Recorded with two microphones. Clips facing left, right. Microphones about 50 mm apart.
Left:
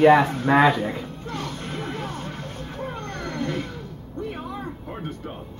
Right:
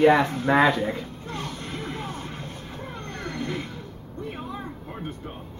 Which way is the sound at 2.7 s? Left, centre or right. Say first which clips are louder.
Left 7 dB; left.